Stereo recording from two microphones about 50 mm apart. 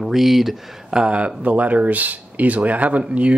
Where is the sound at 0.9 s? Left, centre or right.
Right.